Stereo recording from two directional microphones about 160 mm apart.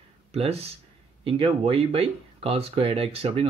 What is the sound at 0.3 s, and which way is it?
Speech, 40° right (ahead or behind).